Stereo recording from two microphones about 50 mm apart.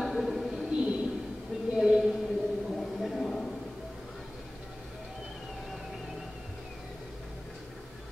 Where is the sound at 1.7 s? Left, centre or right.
Centre.